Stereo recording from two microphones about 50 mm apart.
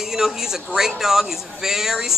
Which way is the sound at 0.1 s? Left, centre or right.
Centre.